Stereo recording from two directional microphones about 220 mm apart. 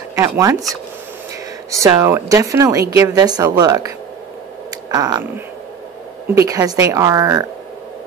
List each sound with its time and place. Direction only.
0.4 s a woman's voice: 15° right (ahead or behind)
1.7 s a woman's voice: 15° right (ahead or behind)
4.9 s a woman's voice: 15° right (ahead or behind)